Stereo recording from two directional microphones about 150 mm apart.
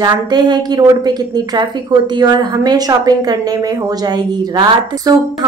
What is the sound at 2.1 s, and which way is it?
Speech, 25° right (ahead or behind).